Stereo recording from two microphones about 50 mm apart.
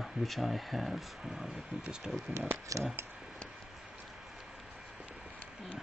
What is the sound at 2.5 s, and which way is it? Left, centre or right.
Speech, right.